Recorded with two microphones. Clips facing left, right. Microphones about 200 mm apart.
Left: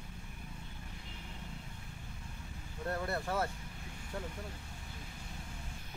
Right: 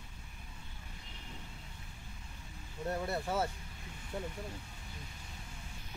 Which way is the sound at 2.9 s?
15° right (ahead or behind).